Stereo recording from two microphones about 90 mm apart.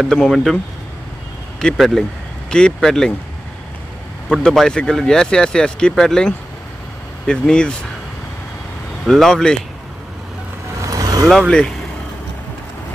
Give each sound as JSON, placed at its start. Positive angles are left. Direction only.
{"t": 0.1, "sound": "speech", "side_deg": 5}
{"t": 1.6, "sound": "speech", "side_deg": 5}
{"t": 4.3, "sound": "speech", "side_deg": 5}
{"t": 9.0, "sound": "speech", "side_deg": 5}
{"t": 10.8, "sound": "vehicle", "side_deg": -40}
{"t": 11.2, "sound": "speech", "side_deg": 5}